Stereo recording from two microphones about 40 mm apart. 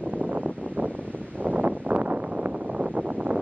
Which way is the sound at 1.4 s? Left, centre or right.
Right.